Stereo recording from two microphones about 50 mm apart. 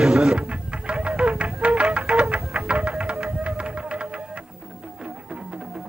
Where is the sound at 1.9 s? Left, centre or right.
Centre.